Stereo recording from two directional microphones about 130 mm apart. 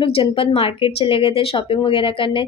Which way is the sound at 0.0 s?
45° left (ahead or behind).